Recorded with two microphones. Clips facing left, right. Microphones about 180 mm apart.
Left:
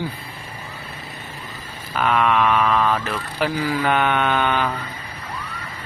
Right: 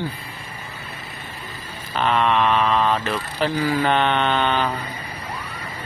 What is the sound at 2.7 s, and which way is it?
Vehicle, 25° right (ahead or behind).